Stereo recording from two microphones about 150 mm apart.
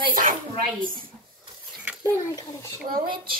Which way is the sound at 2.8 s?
75° right (ahead or behind).